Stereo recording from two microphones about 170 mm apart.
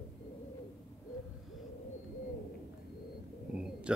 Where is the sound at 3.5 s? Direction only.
5° right (ahead or behind).